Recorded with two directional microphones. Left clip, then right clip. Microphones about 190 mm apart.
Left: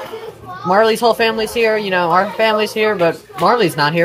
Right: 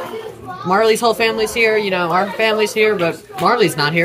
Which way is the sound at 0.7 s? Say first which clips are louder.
Left 1 dB; 15° right (ahead or behind).